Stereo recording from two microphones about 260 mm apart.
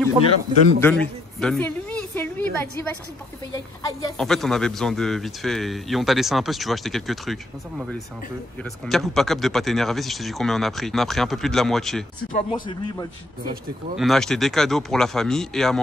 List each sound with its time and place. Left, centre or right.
0.7 s a woman's voice: centre
4.2 s a man's voice: centre
12.3 s speech: left
12.5 s a woman's voice: centre
13.9 s a man's voice: centre